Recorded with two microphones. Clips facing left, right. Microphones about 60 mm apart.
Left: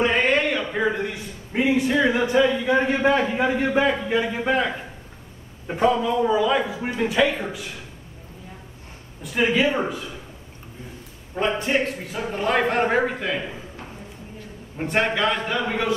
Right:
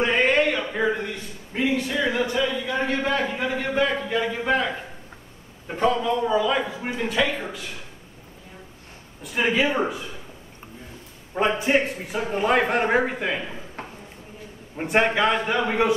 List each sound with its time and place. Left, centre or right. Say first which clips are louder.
0.0 s a sound: even; centre
1.5 s a man's voice: left 4 dB; centre
9.2 s a man's voice: left 2 dB; centre
11.3 s a man's voice: right 1 dB; centre
14.8 s a man's voice: right 2 dB; centre